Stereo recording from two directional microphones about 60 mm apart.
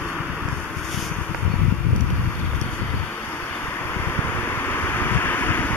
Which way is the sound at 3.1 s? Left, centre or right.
Left.